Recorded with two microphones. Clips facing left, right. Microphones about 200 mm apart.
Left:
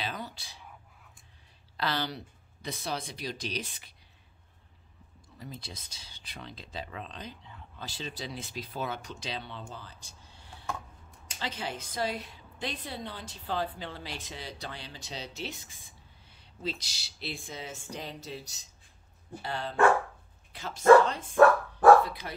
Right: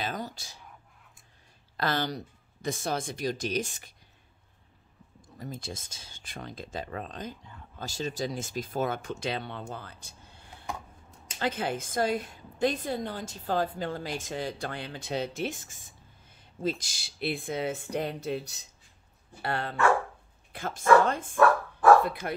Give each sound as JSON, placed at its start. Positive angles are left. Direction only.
{"t": 0.0, "sound": "a sound", "side_deg": -45}
{"t": 1.8, "sound": "a woman's voice", "side_deg": -45}
{"t": 5.4, "sound": "a woman's voice", "side_deg": -50}